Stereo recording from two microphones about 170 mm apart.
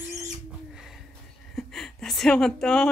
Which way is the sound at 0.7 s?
Centre (ahead or behind).